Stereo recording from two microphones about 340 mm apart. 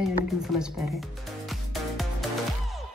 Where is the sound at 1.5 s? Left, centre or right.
Centre.